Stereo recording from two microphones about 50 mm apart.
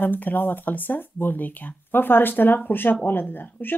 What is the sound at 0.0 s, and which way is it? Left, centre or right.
Speech, left.